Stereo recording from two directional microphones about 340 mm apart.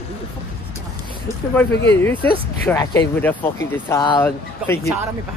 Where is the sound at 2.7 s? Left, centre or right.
Centre.